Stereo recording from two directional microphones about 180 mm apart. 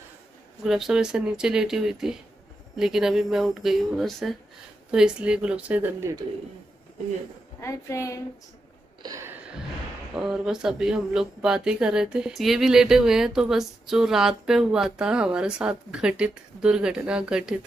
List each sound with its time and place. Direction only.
0.7 s speech: centre (ahead or behind)
7.6 s a woman's voice: 15° left (ahead or behind)
9.0 s a sound: 20° right (ahead or behind)
10.1 s speech: 5° right (ahead or behind)